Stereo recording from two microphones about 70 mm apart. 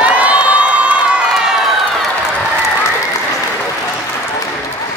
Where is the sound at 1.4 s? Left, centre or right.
Centre.